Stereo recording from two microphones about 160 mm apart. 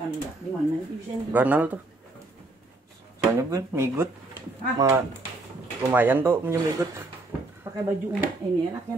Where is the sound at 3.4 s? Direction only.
20° right (ahead or behind).